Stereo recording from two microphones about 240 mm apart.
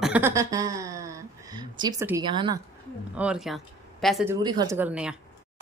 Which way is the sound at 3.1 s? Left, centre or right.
Centre.